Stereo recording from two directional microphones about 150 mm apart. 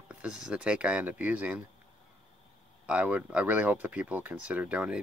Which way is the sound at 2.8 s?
10° right (ahead or behind).